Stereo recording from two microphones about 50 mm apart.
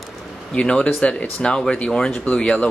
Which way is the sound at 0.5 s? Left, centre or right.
Centre.